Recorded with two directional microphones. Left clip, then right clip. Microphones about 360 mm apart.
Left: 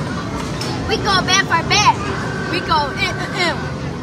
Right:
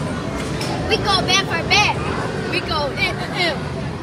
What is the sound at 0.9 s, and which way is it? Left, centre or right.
Speech, left.